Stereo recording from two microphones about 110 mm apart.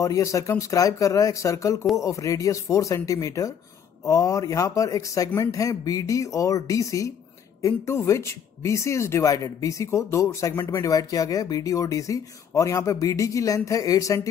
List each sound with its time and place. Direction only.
0.0 s speech: 30° left (ahead or behind)